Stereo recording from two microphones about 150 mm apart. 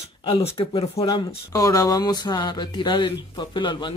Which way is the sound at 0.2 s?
40° left (ahead or behind).